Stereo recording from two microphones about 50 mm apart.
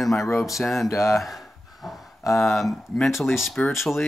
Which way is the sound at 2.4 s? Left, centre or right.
Centre.